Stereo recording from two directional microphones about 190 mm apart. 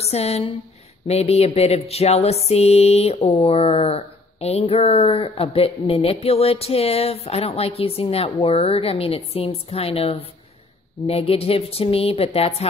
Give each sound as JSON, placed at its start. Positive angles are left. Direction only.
{"t": 0.0, "sound": "music", "side_deg": 35}